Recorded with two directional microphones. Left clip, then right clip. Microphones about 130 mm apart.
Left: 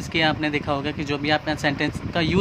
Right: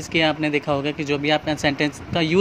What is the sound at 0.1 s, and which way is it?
A woman's voice, 10° right (ahead or behind).